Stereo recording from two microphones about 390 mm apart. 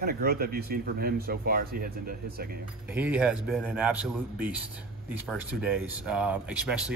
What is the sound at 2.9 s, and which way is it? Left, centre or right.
Speech, centre.